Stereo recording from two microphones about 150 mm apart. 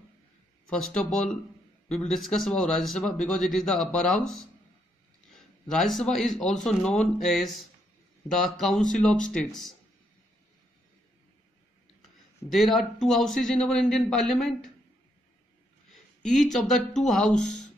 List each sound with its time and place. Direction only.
0.7 s speech: 5° left (ahead or behind)
5.7 s speech: centre (ahead or behind)
12.4 s speech: centre (ahead or behind)
15.9 s speech: centre (ahead or behind)